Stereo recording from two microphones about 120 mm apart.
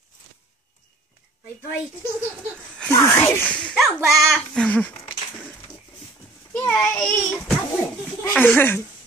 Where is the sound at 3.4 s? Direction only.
5° left (ahead or behind).